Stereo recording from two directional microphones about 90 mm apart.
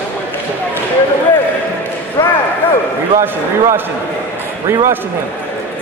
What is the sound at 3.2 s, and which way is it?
Speech, 30° right (ahead or behind).